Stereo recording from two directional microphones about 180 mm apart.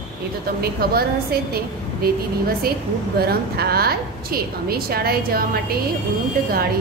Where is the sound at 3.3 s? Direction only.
60° right (ahead or behind).